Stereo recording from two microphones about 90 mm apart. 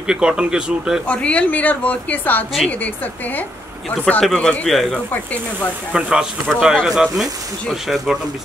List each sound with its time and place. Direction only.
0.0 s speech: 10° right (ahead or behind)
1.0 s a woman's voice: 15° left (ahead or behind)
4.9 s a woman's voice: 15° left (ahead or behind)
5.9 s speech: 10° right (ahead or behind)